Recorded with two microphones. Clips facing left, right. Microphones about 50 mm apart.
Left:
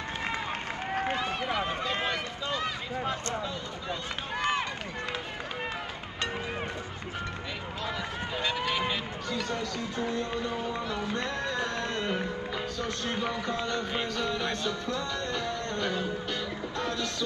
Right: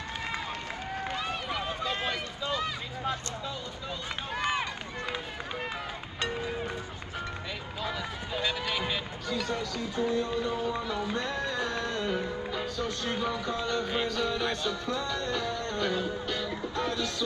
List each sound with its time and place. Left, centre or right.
0.5 s run: left
1.8 s run: centre
6.3 s music: left
8.6 s run: centre
9.3 s speech: centre
10.7 s music: centre
12.7 s a sound: centre
14.0 s music: centre